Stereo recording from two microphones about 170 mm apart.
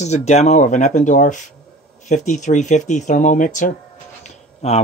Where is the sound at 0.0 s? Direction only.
40° left (ahead or behind).